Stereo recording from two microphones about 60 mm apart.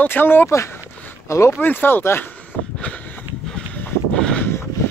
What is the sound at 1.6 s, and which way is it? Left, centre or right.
Speech, left.